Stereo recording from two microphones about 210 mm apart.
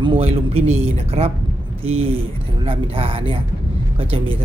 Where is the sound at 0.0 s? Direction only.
25° right (ahead or behind).